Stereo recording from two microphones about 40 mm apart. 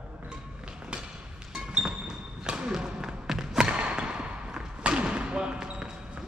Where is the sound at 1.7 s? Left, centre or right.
Centre.